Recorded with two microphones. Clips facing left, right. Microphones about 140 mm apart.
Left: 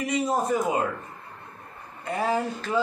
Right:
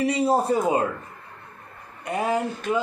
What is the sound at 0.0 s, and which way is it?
Speech, 30° right (ahead or behind).